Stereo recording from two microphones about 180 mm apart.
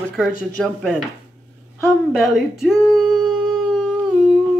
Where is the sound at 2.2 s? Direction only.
Centre (ahead or behind).